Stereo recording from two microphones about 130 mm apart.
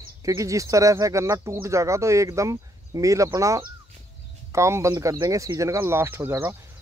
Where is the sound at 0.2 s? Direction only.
25° right (ahead or behind).